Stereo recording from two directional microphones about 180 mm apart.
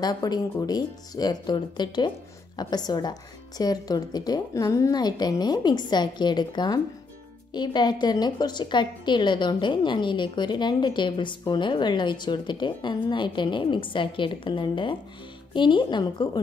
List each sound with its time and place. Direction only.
0.0 s a woman's voice: 20° left (ahead or behind)